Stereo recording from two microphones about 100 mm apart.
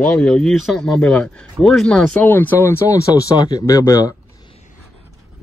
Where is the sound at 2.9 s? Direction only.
35° left (ahead or behind).